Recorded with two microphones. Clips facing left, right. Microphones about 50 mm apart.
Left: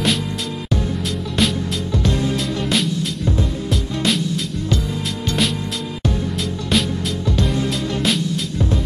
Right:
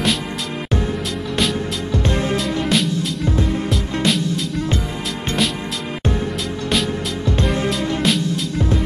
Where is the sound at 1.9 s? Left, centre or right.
Right.